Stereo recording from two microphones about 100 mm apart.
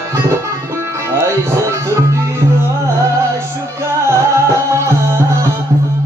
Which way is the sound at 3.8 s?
30° right (ahead or behind).